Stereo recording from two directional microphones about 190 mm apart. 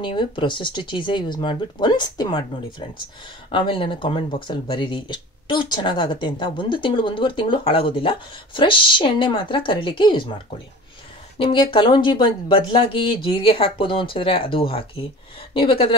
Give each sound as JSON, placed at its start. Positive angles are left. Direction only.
{"t": 0.0, "sound": "speech", "side_deg": 25}
{"t": 3.5, "sound": "speech", "side_deg": 25}
{"t": 11.3, "sound": "speech", "side_deg": 25}